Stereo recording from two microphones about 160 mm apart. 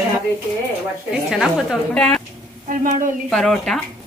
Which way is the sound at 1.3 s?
Centre (ahead or behind).